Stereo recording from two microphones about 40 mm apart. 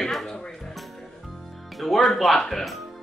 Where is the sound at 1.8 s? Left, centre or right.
Centre.